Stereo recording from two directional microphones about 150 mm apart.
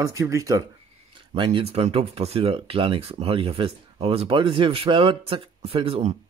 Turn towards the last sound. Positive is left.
turn(degrees=-35)  # may be behind; listen again after turning